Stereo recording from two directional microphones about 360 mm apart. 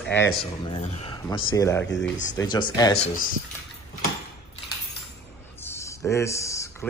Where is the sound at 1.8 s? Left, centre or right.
Left.